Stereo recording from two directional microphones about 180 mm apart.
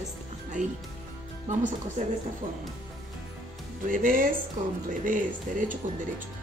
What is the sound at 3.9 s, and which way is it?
A woman's voice, 50° right (ahead or behind).